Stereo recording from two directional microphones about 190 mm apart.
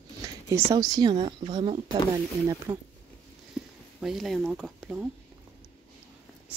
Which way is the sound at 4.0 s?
Centre (ahead or behind).